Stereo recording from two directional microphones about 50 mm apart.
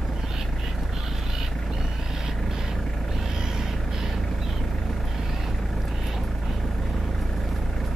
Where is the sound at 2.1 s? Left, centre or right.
Centre.